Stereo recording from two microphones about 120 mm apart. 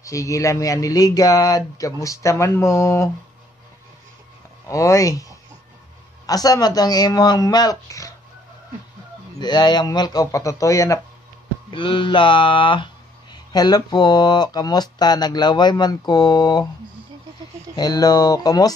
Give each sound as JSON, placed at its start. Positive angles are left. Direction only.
{"t": 0.0, "sound": "speech", "side_deg": 25}
{"t": 4.6, "sound": "speech", "side_deg": 25}
{"t": 6.2, "sound": "speech", "side_deg": 30}
{"t": 9.4, "sound": "speech", "side_deg": 35}
{"t": 11.7, "sound": "speech", "side_deg": 45}
{"t": 17.7, "sound": "speech", "side_deg": 35}